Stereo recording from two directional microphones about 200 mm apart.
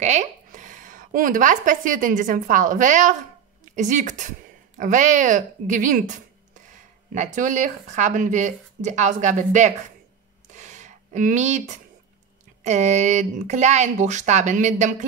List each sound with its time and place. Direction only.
0.0 s speech: 35° right (ahead or behind)
10.5 s a sound: 35° right (ahead or behind)
12.6 s speech: 35° right (ahead or behind)